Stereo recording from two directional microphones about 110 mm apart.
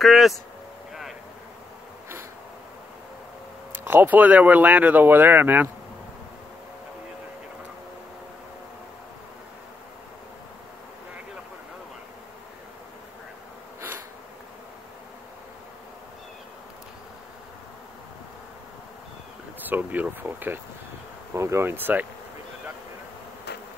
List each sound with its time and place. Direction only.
0.0 s speech: centre (ahead or behind)
3.7 s speech: 20° right (ahead or behind)
13.7 s bee: 20° right (ahead or behind)
19.6 s insect: 15° right (ahead or behind)
21.4 s speech: 25° right (ahead or behind)